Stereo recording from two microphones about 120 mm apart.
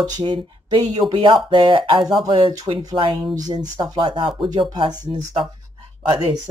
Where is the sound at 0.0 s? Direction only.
40° right (ahead or behind).